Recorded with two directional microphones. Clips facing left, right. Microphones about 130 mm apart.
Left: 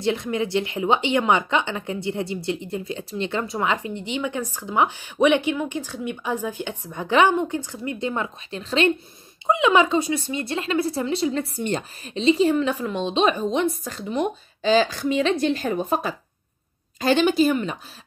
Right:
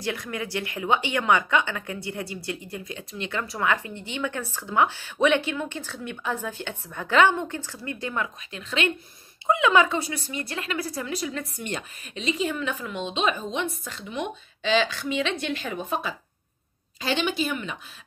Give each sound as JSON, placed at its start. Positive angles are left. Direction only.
{"t": 0.0, "sound": "a woman's voice", "side_deg": 25}
{"t": 9.5, "sound": "speech", "side_deg": 20}